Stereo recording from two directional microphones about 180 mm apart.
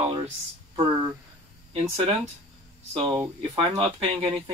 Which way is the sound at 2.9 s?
25° right (ahead or behind).